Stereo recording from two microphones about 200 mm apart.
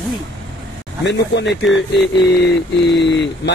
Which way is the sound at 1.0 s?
60° left (ahead or behind).